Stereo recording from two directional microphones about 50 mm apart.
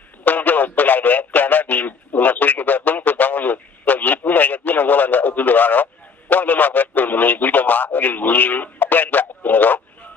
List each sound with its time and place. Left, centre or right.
0.2 s radio: left